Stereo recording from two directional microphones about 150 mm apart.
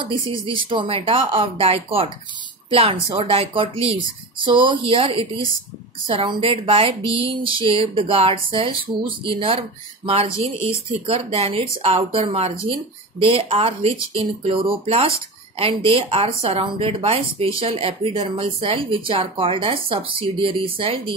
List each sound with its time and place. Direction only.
0.1 s speech: 35° right (ahead or behind)